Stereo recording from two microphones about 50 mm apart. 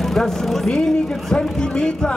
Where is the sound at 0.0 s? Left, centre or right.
Centre.